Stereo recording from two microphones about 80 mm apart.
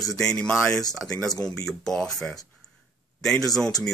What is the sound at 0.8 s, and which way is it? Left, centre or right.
Speech, centre.